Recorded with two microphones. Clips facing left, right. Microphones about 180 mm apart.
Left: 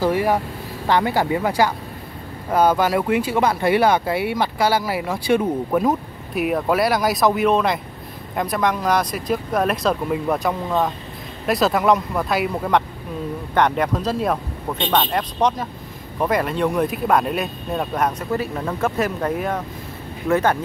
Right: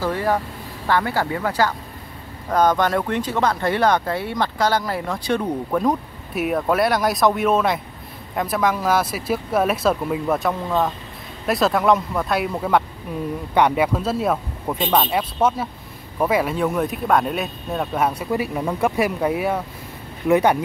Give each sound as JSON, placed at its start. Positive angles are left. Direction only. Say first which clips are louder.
{"t": 0.0, "sound": "speech", "louder": "left 3 dB", "side_deg": 15}